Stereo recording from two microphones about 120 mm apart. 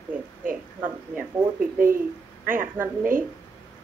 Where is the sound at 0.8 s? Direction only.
15° right (ahead or behind).